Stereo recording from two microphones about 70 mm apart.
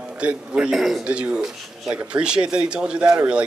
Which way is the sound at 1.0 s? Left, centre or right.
Centre.